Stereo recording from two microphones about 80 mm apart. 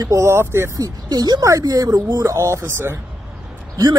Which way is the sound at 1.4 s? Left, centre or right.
Right.